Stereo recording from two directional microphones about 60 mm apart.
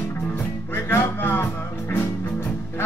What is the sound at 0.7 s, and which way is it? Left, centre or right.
Music, left.